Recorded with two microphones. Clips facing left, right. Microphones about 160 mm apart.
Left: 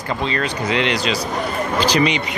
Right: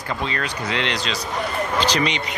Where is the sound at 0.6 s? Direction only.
10° left (ahead or behind).